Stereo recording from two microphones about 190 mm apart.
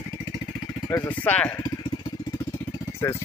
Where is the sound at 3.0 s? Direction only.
15° left (ahead or behind).